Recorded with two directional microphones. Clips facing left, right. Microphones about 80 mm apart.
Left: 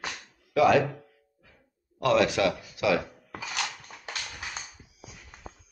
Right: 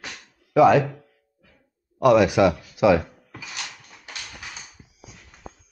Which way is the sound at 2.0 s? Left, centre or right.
Centre.